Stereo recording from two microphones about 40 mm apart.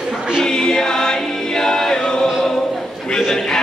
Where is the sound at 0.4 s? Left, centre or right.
Centre.